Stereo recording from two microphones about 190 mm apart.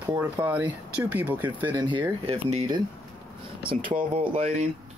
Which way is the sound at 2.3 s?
25° right (ahead or behind).